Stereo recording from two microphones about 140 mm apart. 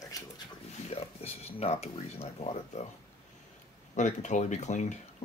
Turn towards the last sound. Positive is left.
turn(degrees=60)  # may be behind; listen again after turning